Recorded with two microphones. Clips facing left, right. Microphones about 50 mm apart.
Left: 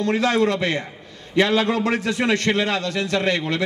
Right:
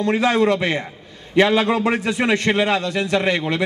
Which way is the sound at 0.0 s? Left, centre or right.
Centre.